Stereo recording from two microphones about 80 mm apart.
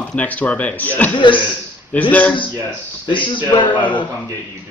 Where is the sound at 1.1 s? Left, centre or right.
Left.